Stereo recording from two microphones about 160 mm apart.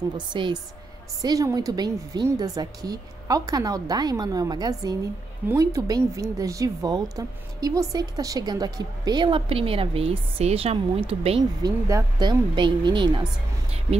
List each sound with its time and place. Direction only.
0.3 s a woman's voice: 30° right (ahead or behind)
11.6 s a woman's voice: 25° right (ahead or behind)